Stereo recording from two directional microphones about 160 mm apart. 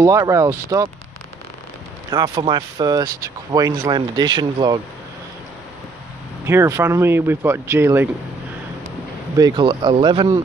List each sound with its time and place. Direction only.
0.0 s speech: 20° right (ahead or behind)
2.0 s speech: 25° right (ahead or behind)
6.4 s speech: 15° right (ahead or behind)
9.4 s speech: 30° right (ahead or behind)